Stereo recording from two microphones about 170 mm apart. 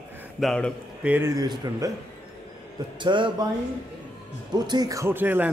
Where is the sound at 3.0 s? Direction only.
30° right (ahead or behind).